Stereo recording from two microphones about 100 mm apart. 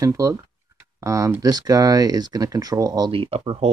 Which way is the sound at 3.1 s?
65° right (ahead or behind).